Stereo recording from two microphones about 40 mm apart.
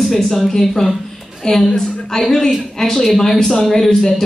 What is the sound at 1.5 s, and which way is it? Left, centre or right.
Speech, left.